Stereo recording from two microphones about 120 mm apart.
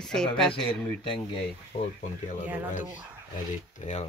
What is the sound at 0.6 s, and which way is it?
Speech, 45° left (ahead or behind).